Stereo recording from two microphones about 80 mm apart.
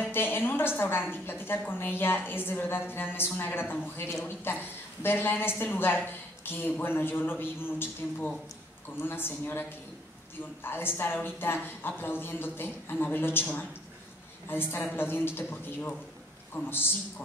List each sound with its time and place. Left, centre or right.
0.1 s a sound: left
1.1 s a woman's voice: left
9.0 s a woman's voice: left
14.5 s a woman's voice: left